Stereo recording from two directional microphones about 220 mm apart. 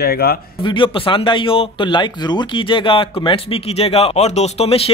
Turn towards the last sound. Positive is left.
turn(degrees=25)  # may be behind; listen again after turning